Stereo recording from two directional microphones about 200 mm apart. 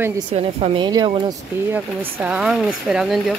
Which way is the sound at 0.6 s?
25° right (ahead or behind).